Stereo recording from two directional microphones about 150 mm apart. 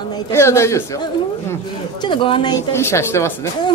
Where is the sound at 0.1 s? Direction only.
20° left (ahead or behind).